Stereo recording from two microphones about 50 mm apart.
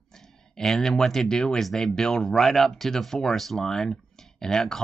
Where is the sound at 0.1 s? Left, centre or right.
Centre.